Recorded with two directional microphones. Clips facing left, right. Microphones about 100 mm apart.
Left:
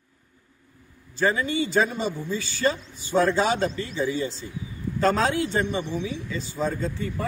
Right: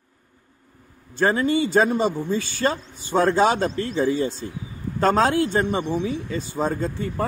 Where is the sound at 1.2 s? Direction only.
40° right (ahead or behind).